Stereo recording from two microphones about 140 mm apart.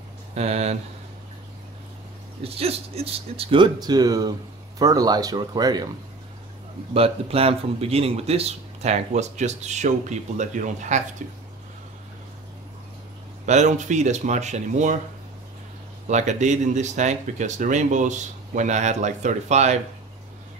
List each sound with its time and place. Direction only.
0.3 s speech: 50° right (ahead or behind)
2.4 s speech: 45° right (ahead or behind); by 5.9 s 30° right (ahead or behind)
6.9 s speech: 45° right (ahead or behind); by 11.4 s 65° right (ahead or behind)
13.5 s speech: 55° right (ahead or behind)
16.1 s speech: 55° right (ahead or behind)